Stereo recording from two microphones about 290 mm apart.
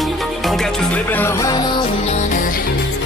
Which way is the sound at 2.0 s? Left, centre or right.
Left.